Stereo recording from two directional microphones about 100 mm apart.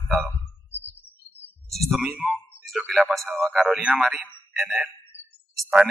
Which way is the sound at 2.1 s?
15° right (ahead or behind).